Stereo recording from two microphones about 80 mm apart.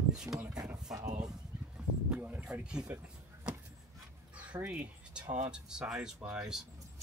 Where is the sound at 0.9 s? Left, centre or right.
Right.